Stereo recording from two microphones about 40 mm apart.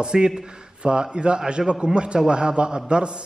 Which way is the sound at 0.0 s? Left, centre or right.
Right.